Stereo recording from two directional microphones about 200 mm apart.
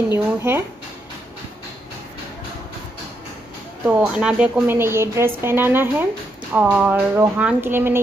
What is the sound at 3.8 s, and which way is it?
A woman's voice, 5° right (ahead or behind).